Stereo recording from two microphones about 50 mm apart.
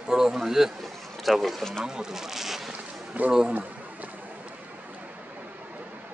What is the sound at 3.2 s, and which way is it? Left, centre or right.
Speech, right.